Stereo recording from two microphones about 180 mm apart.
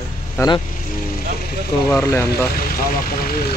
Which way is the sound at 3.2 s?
55° left (ahead or behind).